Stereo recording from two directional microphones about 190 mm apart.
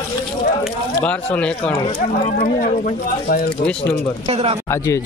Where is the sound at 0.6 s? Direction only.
5° left (ahead or behind).